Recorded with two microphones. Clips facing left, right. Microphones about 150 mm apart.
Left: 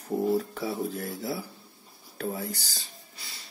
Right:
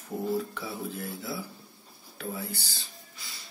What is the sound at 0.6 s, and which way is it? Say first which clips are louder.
Speech: left 5 dB; 35° left (ahead or behind).